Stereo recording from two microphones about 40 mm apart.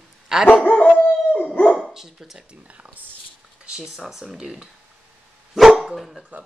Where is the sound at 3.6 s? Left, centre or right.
Centre.